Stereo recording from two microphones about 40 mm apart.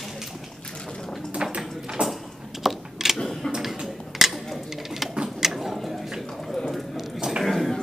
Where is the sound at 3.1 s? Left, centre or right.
Centre.